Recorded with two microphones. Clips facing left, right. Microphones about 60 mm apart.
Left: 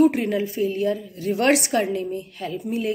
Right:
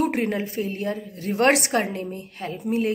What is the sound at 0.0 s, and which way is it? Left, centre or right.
A woman's voice, right.